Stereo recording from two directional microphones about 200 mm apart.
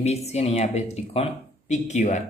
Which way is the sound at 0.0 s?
35° left (ahead or behind).